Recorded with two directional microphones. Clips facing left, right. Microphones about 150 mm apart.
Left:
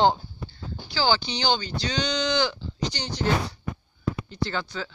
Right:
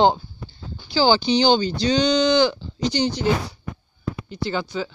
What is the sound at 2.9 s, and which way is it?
Speech, 10° right (ahead or behind).